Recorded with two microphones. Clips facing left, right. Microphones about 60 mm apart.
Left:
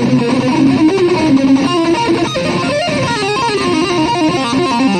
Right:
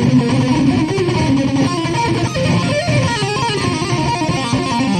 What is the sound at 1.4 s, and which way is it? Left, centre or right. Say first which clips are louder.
Music: left 6 dB; left.